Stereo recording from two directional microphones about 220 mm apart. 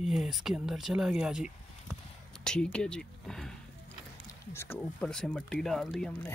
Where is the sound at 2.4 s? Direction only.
5° left (ahead or behind).